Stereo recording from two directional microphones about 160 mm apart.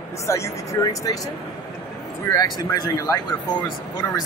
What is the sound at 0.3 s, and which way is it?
Speech, 20° left (ahead or behind).